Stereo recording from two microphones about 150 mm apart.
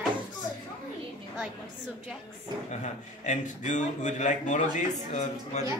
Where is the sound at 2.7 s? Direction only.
55° left (ahead or behind).